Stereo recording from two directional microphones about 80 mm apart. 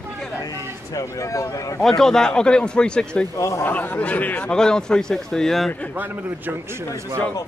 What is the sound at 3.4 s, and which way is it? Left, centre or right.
Speech, left.